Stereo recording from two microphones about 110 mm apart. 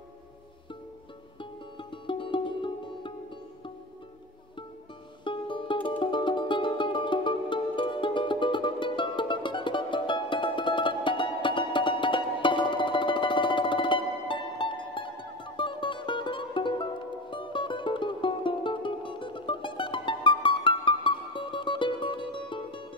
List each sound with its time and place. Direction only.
1.4 s music: 50° left (ahead or behind)
5.2 s music: 50° left (ahead or behind)